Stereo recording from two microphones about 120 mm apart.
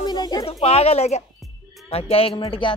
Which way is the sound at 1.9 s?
55° left (ahead or behind).